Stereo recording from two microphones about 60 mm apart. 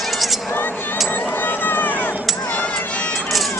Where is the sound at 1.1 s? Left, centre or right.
Left.